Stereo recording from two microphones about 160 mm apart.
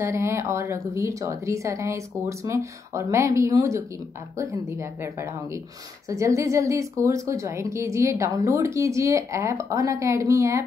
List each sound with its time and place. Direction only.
0.0 s a woman's voice: 15° right (ahead or behind)